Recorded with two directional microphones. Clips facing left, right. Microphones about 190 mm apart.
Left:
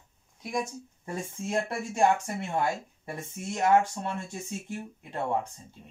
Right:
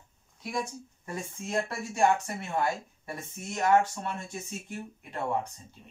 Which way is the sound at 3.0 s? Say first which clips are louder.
Left 2 dB; 25° left (ahead or behind).